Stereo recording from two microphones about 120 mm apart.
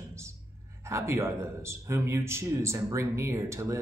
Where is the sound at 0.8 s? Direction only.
25° right (ahead or behind).